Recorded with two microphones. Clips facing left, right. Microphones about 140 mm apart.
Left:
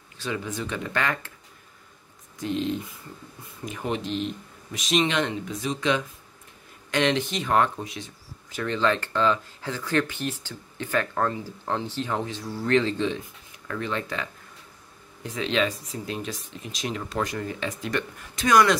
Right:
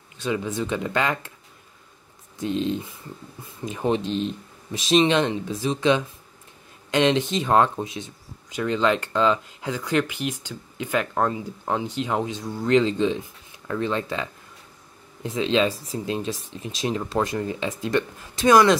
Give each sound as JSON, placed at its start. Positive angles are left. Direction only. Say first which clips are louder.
{"t": 0.2, "sound": "speech", "louder": "right 5 dB", "side_deg": -20}
{"t": 2.4, "sound": "speech", "louder": "right 2 dB", "side_deg": -25}